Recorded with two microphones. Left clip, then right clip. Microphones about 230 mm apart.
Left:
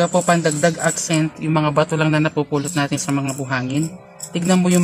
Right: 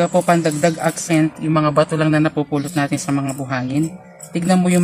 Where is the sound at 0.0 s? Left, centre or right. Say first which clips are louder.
Right 1 dB; centre.